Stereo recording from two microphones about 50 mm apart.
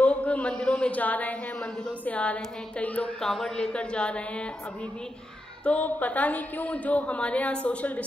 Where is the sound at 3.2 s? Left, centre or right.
Centre.